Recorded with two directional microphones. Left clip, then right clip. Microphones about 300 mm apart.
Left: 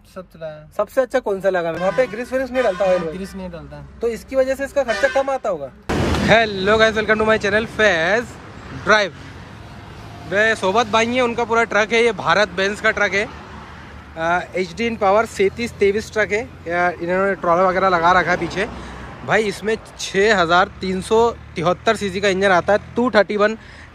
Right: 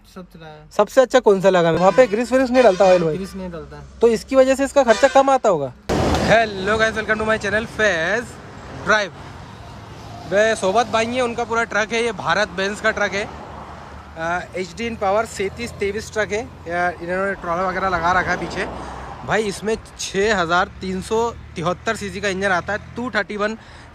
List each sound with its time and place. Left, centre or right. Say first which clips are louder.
0.7 s speech: right 4 dB; right
4.0 s speech: right 5 dB; right
6.2 s speech: left 3 dB; centre
10.3 s speech: even; centre